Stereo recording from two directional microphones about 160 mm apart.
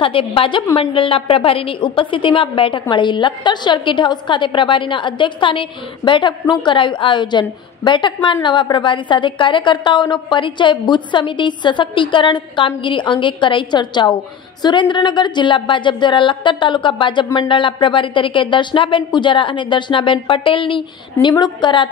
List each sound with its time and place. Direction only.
0.0 s a woman's voice: 35° left (ahead or behind)